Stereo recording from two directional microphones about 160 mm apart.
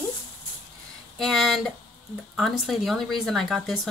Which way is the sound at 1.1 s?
Centre (ahead or behind).